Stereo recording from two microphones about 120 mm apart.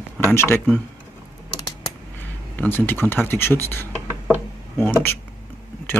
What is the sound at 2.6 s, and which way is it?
Speech, 20° left (ahead or behind).